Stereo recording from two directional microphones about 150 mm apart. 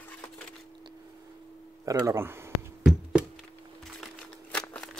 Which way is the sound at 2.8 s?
5° right (ahead or behind).